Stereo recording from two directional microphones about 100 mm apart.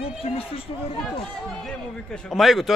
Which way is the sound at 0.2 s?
75° left (ahead or behind).